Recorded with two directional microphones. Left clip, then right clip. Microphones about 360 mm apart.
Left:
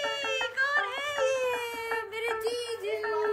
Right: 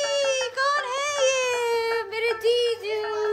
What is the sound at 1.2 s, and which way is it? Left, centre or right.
Baby cry, right.